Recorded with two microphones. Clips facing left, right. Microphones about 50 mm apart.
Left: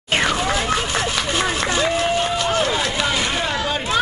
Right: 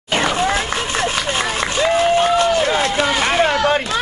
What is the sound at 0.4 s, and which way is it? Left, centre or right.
Vehicle, right.